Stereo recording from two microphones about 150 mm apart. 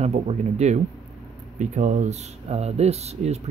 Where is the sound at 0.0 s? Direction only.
45° right (ahead or behind).